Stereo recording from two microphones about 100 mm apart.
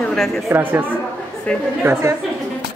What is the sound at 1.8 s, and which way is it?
Speech, 25° right (ahead or behind).